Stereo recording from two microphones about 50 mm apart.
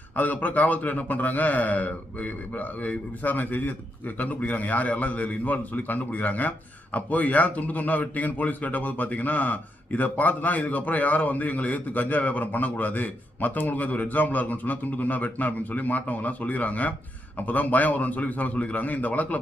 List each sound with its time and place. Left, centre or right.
0.1 s a man's voice: left